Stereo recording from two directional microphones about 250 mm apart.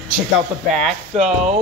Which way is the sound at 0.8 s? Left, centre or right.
Centre.